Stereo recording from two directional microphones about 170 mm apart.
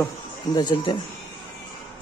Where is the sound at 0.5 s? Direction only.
25° left (ahead or behind).